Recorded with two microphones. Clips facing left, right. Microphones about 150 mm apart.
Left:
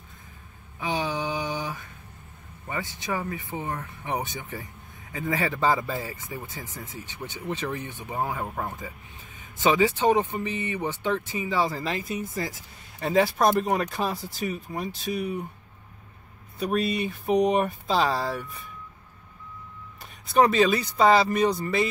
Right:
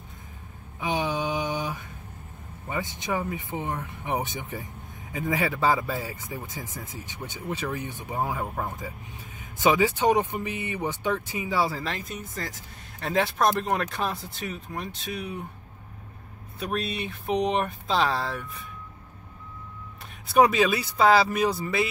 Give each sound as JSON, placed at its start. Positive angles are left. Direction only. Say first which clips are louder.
{"t": 0.7, "sound": "a sound", "louder": "right 1 dB", "side_deg": -15}
{"t": 2.7, "sound": "speech", "louder": "right 1 dB", "side_deg": -20}
{"t": 11.8, "sound": "speech", "louder": "left 4 dB", "side_deg": 0}
{"t": 16.5, "sound": "speech", "louder": "left 4 dB", "side_deg": 0}
{"t": 20.3, "sound": "speech", "louder": "even", "side_deg": -10}